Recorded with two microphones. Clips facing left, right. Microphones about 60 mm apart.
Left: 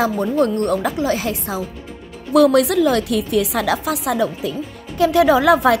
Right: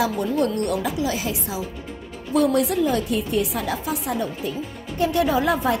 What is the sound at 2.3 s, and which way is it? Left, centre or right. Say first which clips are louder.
A woman's voice: left 6 dB; left.